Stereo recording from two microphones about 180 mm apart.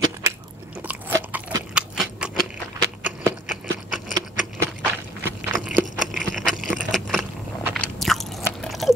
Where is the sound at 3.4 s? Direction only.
45° left (ahead or behind).